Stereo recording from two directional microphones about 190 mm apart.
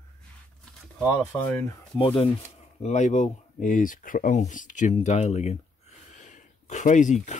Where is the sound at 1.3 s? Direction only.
10° left (ahead or behind).